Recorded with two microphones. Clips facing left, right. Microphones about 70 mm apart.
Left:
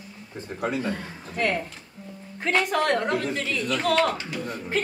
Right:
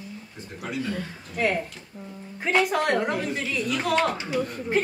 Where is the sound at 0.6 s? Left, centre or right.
Left.